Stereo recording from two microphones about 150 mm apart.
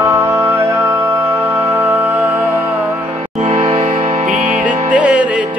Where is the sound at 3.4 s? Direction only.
45° right (ahead or behind).